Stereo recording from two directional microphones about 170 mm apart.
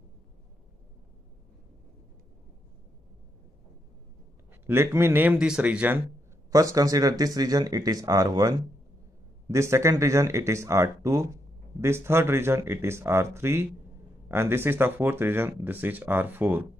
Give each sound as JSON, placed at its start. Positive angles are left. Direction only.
{"t": 4.6, "sound": "speech", "side_deg": -15}
{"t": 6.5, "sound": "speech", "side_deg": -20}